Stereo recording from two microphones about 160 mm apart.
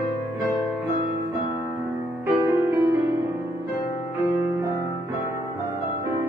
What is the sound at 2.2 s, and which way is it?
Music, 15° right (ahead or behind).